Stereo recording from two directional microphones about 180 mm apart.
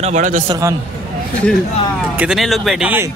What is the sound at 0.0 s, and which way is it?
Speech, 45° right (ahead or behind).